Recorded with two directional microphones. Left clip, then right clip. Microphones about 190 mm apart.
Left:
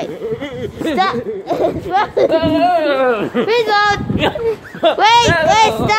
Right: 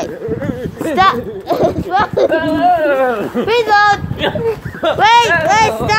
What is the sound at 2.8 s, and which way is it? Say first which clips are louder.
Speech: right 2 dB; 50° left (ahead or behind).